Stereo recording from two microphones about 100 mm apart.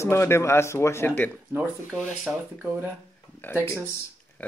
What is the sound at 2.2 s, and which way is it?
Speech, 15° right (ahead or behind).